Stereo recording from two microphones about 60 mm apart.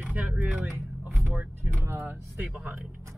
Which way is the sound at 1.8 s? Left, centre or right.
Right.